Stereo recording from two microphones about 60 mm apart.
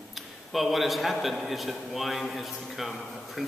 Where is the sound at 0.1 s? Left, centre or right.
Centre.